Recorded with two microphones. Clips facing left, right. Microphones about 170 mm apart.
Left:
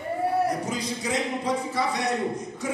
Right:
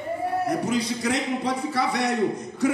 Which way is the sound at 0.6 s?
65° right (ahead or behind).